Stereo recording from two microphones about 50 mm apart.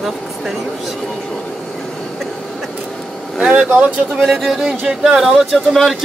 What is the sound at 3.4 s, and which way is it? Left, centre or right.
Speech, right.